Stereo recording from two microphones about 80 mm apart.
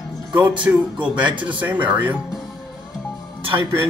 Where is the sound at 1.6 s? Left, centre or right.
Centre.